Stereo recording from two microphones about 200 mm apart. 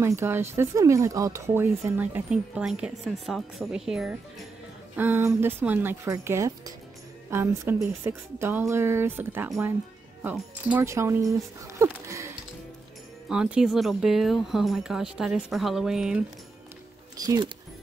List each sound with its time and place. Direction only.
0.0 s speech: 10° right (ahead or behind)
11.8 s a sound: 15° right (ahead or behind)
13.3 s speech: 5° right (ahead or behind)
17.2 s speech: 20° right (ahead or behind)